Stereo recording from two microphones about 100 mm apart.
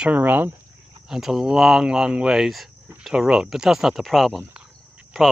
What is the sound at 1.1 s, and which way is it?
Speech, 5° right (ahead or behind).